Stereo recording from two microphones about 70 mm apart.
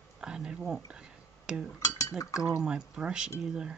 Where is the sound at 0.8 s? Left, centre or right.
Centre.